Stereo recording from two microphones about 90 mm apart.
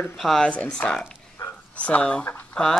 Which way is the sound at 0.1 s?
5° left (ahead or behind).